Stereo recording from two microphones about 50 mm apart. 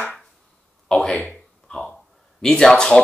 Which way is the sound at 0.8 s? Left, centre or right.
Centre.